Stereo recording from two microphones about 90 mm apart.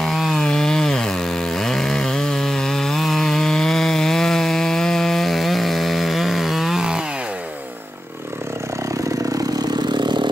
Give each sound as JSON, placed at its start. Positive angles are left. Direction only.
{"t": 0.0, "sound": "chainsaw", "side_deg": 0}
{"t": 9.3, "sound": "vehicle", "side_deg": -50}